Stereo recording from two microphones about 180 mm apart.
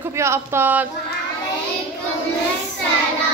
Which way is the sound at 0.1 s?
15° right (ahead or behind).